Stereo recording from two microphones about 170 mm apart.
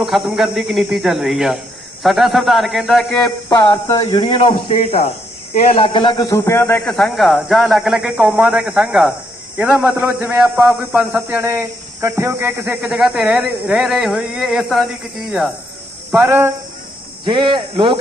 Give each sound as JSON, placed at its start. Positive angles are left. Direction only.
{"t": 0.0, "sound": "a man's voice", "side_deg": 0}
{"t": 3.4, "sound": "a man's voice", "side_deg": 25}
{"t": 4.2, "sound": "a man's voice", "side_deg": 30}
{"t": 5.0, "sound": "a man's voice", "side_deg": 40}
{"t": 6.8, "sound": "a man's voice", "side_deg": 0}
{"t": 16.1, "sound": "speech", "side_deg": -10}
{"t": 17.2, "sound": "speech", "side_deg": -25}